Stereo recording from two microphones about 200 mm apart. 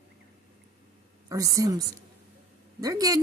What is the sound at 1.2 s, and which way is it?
Speech, 15° right (ahead or behind).